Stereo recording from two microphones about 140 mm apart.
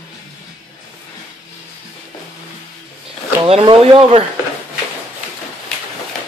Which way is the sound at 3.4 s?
40° right (ahead or behind).